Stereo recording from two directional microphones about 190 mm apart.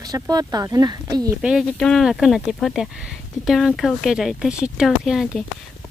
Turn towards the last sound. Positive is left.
turn(degrees=0)  # may be behind; listen again after turning